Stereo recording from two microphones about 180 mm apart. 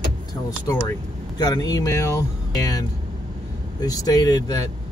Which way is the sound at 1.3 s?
20° left (ahead or behind).